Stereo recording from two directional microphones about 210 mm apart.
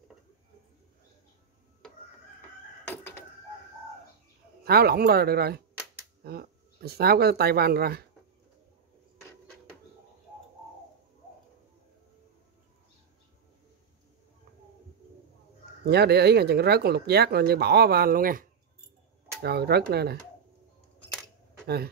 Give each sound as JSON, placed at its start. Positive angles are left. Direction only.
{"t": 2.9, "sound": "chicken", "side_deg": 10}
{"t": 4.6, "sound": "speech", "side_deg": -50}
{"t": 15.8, "sound": "speech", "side_deg": -50}